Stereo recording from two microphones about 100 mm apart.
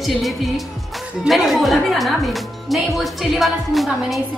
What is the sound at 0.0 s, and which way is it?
Speech, centre (ahead or behind).